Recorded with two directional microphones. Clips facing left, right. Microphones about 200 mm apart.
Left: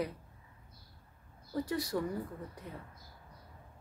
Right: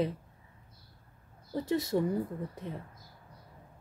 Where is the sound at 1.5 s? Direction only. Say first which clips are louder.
Right 4 dB; 25° right (ahead or behind).